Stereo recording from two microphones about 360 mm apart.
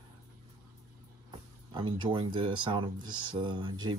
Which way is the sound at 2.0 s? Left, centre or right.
Centre.